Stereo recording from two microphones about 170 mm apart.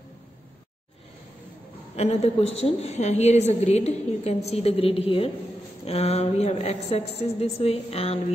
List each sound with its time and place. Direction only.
2.0 s a woman's voice: 40° left (ahead or behind)